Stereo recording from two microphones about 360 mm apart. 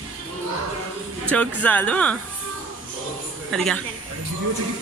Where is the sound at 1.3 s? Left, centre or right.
Centre.